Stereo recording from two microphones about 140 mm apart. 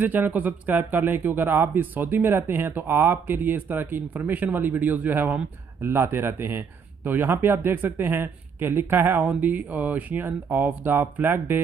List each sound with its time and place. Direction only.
0.0 s speech: 10° right (ahead or behind)